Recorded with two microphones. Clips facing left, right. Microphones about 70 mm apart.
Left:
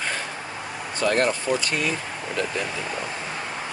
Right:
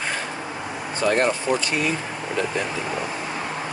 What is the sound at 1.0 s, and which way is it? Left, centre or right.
Speech, centre.